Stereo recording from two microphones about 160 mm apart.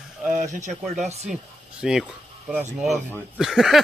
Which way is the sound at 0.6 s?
45° right (ahead or behind).